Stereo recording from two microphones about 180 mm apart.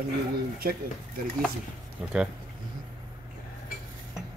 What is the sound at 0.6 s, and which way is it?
Speech, 55° right (ahead or behind).